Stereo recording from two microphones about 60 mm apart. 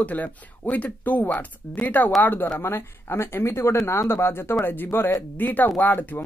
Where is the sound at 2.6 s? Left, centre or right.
Left.